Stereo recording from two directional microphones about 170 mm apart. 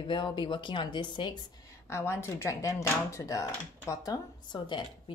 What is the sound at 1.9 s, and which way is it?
Speech, 15° left (ahead or behind).